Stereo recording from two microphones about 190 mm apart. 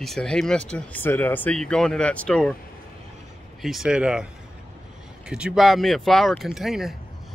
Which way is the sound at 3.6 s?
Centre (ahead or behind).